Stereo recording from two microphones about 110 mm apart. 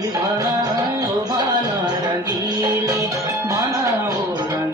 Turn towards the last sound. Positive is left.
turn(degrees=-30)  # may be behind; listen again after turning